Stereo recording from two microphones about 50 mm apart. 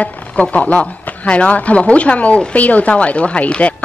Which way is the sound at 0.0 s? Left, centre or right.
Left.